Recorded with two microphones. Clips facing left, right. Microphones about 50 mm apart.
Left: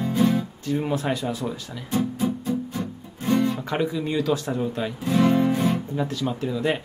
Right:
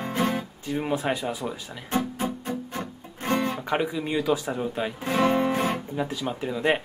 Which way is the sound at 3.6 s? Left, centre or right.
Centre.